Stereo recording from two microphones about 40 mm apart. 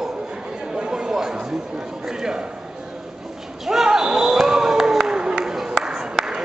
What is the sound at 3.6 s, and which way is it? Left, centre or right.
Basketball bounce, centre.